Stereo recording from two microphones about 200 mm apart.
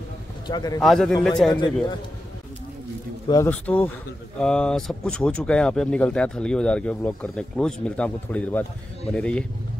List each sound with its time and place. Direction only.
0.5 s speech: 20° left (ahead or behind)
0.7 s speech: centre (ahead or behind)
1.5 s speech: 20° left (ahead or behind)
3.3 s speech: 15° left (ahead or behind)
3.5 s speech: 5° left (ahead or behind)